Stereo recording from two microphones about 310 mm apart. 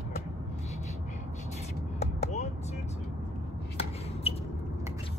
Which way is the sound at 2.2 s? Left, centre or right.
Left.